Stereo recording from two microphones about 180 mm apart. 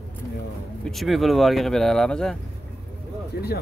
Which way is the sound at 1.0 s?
Centre (ahead or behind).